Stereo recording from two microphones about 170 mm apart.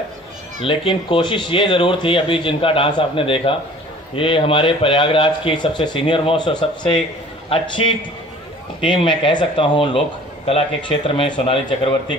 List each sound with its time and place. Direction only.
0.6 s a man's voice: 30° left (ahead or behind)